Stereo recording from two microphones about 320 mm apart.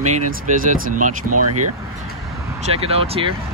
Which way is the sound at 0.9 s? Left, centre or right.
Right.